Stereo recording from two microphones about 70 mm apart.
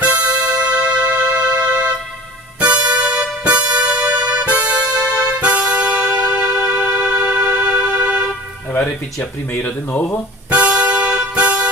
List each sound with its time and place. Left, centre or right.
0.0 s music: centre
8.8 s a sound: left
9.8 s speech: left
10.5 s music: centre